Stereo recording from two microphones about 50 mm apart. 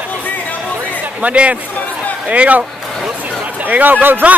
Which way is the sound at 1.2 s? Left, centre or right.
Right.